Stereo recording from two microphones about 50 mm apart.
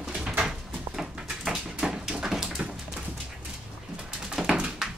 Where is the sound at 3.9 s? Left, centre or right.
Centre.